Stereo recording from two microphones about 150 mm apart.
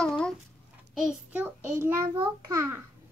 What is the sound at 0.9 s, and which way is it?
Child singing, 5° right (ahead or behind).